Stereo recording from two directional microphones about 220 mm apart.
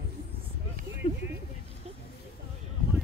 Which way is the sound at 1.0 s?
25° left (ahead or behind).